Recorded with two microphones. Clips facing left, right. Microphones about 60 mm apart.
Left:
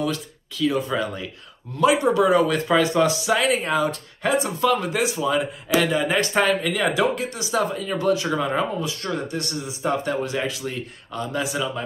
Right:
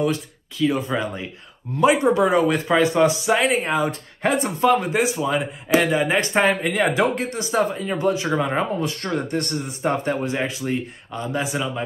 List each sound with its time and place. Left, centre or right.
0.0 s speech: right
8.8 s speech: right